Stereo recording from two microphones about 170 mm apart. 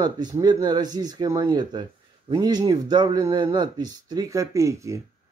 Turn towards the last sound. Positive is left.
turn(degrees=-15)  # may be behind; listen again after turning